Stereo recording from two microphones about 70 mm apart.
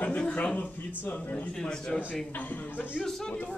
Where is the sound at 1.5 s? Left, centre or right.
Centre.